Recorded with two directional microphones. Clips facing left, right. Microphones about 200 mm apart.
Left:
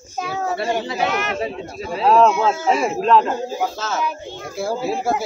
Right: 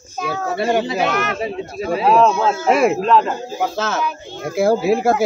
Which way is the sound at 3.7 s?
65° right (ahead or behind).